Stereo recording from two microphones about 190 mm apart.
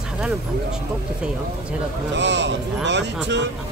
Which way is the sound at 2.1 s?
65° right (ahead or behind).